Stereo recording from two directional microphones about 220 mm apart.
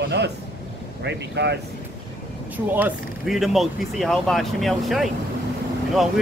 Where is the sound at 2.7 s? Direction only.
5° right (ahead or behind).